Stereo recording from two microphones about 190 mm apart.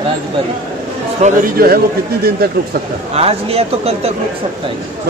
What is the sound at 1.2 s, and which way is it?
Speech, 50° right (ahead or behind).